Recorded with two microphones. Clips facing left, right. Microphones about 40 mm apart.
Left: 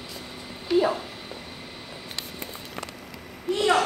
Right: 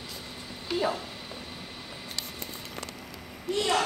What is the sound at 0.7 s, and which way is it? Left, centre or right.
Speech, centre.